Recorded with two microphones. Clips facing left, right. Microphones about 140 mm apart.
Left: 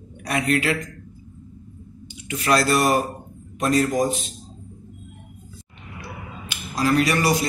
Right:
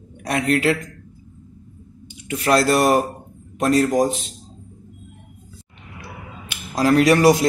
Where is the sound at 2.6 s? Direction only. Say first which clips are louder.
Right 3 dB; 60° right (ahead or behind).